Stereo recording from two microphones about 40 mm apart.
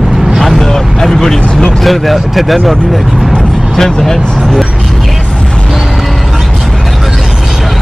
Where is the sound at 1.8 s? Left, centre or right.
Centre.